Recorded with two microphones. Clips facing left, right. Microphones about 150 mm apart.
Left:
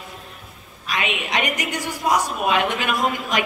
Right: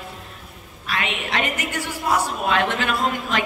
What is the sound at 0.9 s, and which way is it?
A woman's voice, 15° left (ahead or behind).